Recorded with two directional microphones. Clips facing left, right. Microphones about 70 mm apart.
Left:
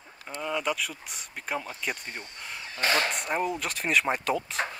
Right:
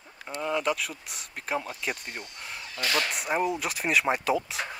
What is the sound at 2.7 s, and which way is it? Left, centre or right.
Speech, left.